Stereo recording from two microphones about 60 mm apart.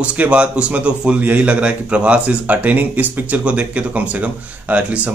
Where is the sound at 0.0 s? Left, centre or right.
Right.